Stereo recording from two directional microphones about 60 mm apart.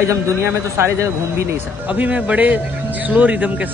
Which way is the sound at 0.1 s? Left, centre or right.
Right.